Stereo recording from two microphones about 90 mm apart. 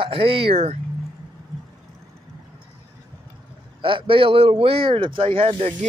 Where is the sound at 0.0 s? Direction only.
90° right.